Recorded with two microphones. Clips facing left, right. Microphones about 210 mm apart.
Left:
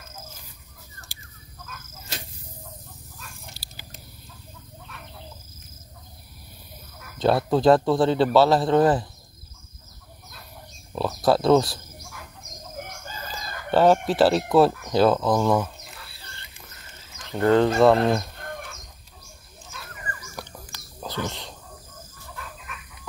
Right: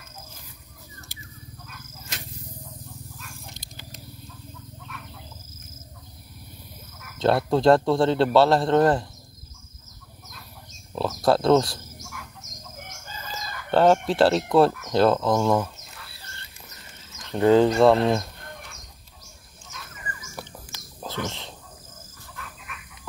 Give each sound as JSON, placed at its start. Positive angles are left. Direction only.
{"t": 1.7, "sound": "arrow", "side_deg": 30}
{"t": 7.2, "sound": "speech", "side_deg": 0}
{"t": 11.0, "sound": "speech", "side_deg": 0}
{"t": 13.0, "sound": "chicken", "side_deg": 50}
{"t": 13.7, "sound": "speech", "side_deg": 5}
{"t": 17.4, "sound": "speech", "side_deg": -15}
{"t": 17.7, "sound": "speech", "side_deg": 0}
{"t": 21.0, "sound": "wild animals", "side_deg": 0}